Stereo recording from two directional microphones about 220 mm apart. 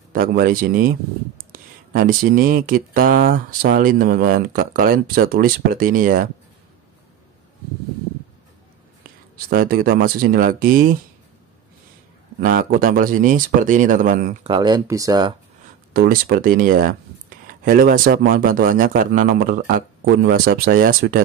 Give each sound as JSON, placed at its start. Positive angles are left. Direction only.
{"t": 0.1, "sound": "speech", "side_deg": -40}
{"t": 9.5, "sound": "speech", "side_deg": -40}
{"t": 12.4, "sound": "speech", "side_deg": -40}
{"t": 14.4, "sound": "speech", "side_deg": -20}
{"t": 15.9, "sound": "speech", "side_deg": -45}